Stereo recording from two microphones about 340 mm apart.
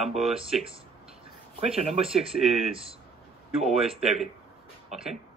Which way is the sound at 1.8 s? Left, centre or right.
Centre.